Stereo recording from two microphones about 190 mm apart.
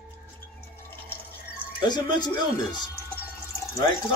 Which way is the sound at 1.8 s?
20° left (ahead or behind).